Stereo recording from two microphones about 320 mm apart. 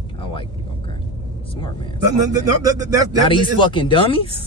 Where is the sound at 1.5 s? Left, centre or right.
Centre.